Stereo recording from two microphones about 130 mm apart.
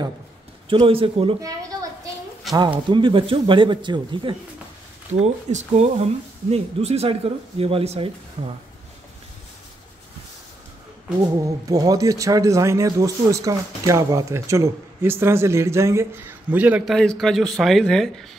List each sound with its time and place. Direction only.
0.7 s speech: 40° right (ahead or behind)
1.4 s a sound: 25° right (ahead or behind)
2.9 s speech: 40° right (ahead or behind)
5.2 s speech: 65° right (ahead or behind)
8.4 s speech: 65° right (ahead or behind)
11.4 s speech: 25° right (ahead or behind); by 16.8 s 10° right (ahead or behind)
16.8 s speech: 5° left (ahead or behind)